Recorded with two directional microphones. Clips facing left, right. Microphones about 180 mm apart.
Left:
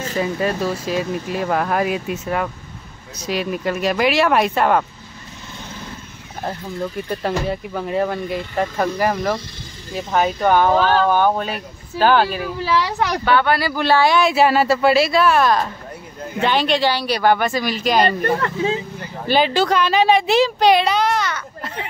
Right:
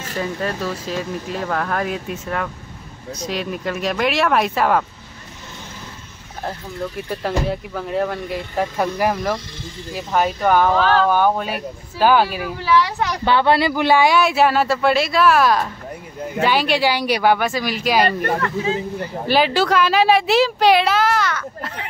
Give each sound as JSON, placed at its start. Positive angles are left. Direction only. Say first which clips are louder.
{"t": 0.2, "sound": "speech", "louder": "left 3 dB", "side_deg": 10}
{"t": 7.1, "sound": "speech", "louder": "right 1 dB", "side_deg": 0}
{"t": 13.2, "sound": "speech", "louder": "right 3 dB", "side_deg": -25}
{"t": 14.2, "sound": "speech", "louder": "left 1 dB", "side_deg": 0}
{"t": 19.2, "sound": "speech", "louder": "left 1 dB", "side_deg": -5}